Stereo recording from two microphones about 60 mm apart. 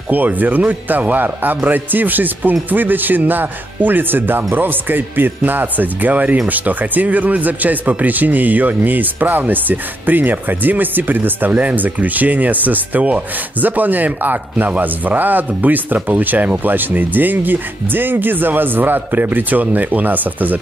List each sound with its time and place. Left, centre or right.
0.1 s a man's voice: right